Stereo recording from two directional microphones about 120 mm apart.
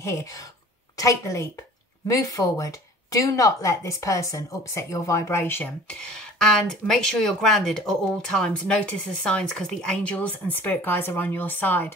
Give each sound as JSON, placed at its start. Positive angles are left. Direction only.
{"t": 0.0, "sound": "a woman's voice", "side_deg": 25}